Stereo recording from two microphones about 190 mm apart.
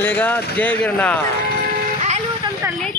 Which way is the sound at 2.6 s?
10° right (ahead or behind).